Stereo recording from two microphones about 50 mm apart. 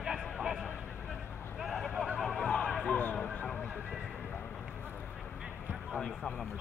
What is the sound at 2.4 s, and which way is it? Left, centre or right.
Music, centre.